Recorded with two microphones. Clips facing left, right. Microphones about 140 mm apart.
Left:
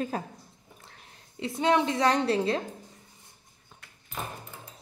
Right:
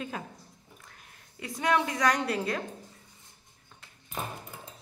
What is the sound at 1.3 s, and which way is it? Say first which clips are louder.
A woman's voice: left 3 dB; 25° left (ahead or behind).